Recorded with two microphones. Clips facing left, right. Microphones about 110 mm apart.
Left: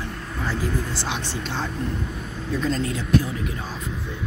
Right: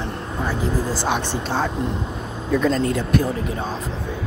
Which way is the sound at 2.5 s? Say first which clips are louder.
Right 6 dB; 50° right (ahead or behind).